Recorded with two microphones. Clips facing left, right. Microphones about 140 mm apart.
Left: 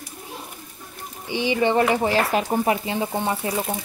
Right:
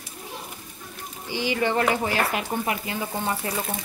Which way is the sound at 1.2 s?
20° left (ahead or behind).